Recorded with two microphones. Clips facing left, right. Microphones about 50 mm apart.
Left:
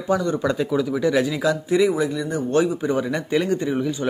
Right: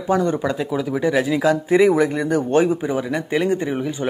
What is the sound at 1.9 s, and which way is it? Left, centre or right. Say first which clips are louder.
Speech: right 5 dB; right.